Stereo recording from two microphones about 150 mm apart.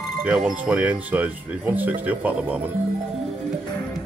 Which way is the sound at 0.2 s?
5° right (ahead or behind).